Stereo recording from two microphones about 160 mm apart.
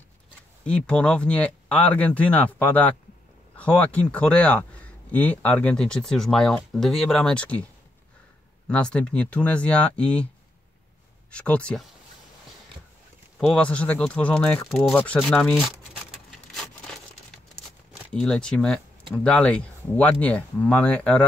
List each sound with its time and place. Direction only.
0.7 s speech: 5° left (ahead or behind)
8.6 s speech: 5° left (ahead or behind)
11.2 s speech: 5° left (ahead or behind)
13.5 s speech: 5° left (ahead or behind)
16.3 s a sound: centre (ahead or behind)
18.1 s speech: 5° left (ahead or behind)